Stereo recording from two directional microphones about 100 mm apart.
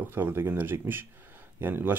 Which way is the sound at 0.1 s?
20° right (ahead or behind).